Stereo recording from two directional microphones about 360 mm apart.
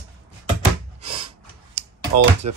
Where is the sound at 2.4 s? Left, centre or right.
Right.